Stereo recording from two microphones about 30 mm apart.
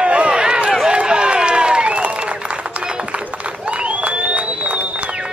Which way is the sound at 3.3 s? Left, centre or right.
Right.